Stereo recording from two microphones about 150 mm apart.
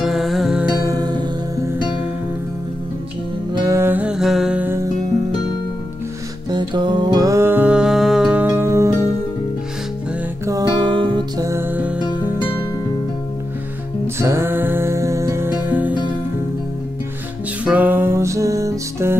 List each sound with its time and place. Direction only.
0.0 s music: centre (ahead or behind)
0.8 s music: 25° right (ahead or behind)
3.6 s music: 15° right (ahead or behind)
6.5 s music: 30° right (ahead or behind)
10.4 s music: 25° right (ahead or behind); by 12.1 s 10° right (ahead or behind)
14.0 s music: 15° right (ahead or behind)
17.6 s music: 10° right (ahead or behind)